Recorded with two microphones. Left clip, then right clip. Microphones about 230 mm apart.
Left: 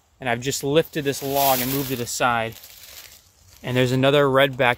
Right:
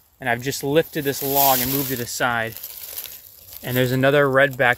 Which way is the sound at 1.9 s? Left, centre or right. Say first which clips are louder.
Left 2 dB; centre.